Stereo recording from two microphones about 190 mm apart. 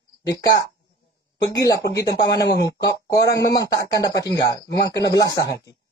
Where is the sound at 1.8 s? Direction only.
60° left (ahead or behind).